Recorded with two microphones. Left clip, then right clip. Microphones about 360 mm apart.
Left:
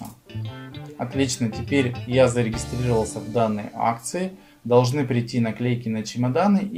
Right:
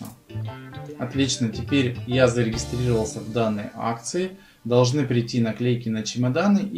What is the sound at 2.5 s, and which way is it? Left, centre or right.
Speech, centre.